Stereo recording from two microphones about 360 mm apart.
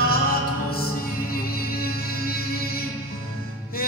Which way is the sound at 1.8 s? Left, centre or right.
Left.